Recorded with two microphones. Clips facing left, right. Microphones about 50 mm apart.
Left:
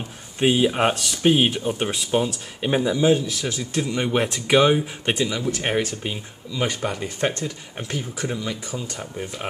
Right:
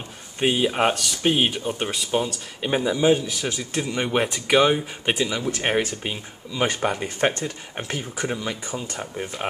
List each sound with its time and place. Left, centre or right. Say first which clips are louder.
0.4 s speech: left 2 dB; centre